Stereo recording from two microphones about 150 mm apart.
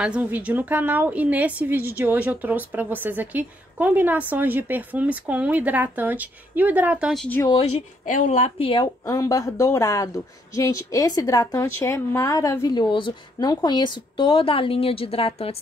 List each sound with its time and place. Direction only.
0.0 s a woman's voice: 10° right (ahead or behind)
7.2 s speech: 10° left (ahead or behind)
8.1 s speech: 55° left (ahead or behind)